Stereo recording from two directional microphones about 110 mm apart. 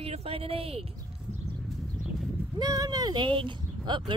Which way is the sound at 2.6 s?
35° right (ahead or behind).